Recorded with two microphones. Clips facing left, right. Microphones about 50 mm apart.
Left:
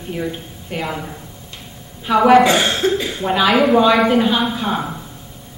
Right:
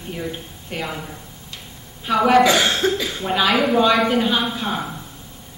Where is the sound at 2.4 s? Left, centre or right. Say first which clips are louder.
Left 2 dB; left.